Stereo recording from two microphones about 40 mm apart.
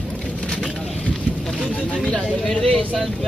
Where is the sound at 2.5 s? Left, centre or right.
Centre.